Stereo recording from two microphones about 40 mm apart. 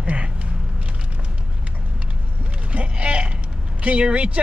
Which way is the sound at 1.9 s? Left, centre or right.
Right.